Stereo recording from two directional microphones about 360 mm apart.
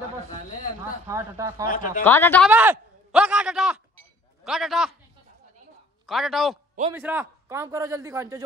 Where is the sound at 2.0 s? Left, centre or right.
Centre.